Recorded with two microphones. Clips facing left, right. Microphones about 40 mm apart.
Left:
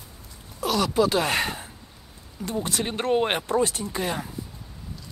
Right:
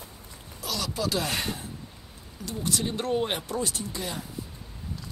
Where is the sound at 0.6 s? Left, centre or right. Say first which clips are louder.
Left 9 dB; left.